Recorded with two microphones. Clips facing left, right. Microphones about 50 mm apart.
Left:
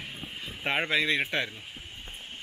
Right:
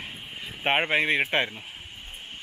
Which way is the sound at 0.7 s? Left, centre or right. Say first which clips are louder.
Right 4 dB; right.